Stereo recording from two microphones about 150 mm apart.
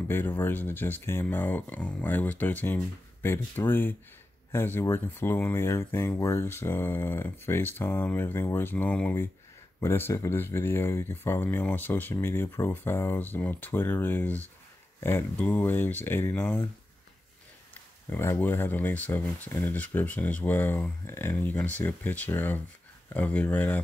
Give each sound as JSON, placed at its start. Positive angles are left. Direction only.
{"t": 0.1, "sound": "speech", "side_deg": 15}
{"t": 18.1, "sound": "speech", "side_deg": 15}